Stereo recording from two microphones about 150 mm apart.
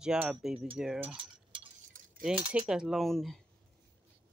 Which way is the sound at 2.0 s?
60° right (ahead or behind).